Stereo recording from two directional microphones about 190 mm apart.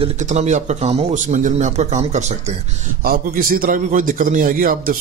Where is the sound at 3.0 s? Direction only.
50° right (ahead or behind).